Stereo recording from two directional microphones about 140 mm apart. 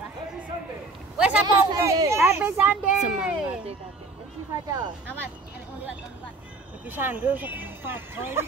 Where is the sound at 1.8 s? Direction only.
20° right (ahead or behind).